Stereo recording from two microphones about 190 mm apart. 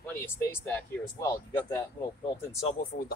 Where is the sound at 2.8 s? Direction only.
50° left (ahead or behind).